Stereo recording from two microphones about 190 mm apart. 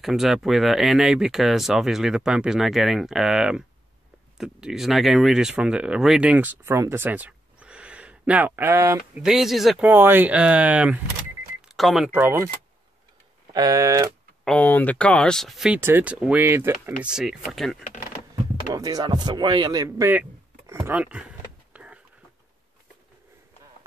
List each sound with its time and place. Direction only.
0.0 s speech: centre (ahead or behind)
9.2 s speech: centre (ahead or behind)
13.5 s speech: 20° right (ahead or behind)
14.4 s speech: 5° left (ahead or behind)
18.3 s a sound: 20° right (ahead or behind)